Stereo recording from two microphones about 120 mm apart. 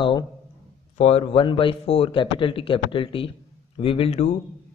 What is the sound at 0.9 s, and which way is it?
A man's voice, 60° left (ahead or behind).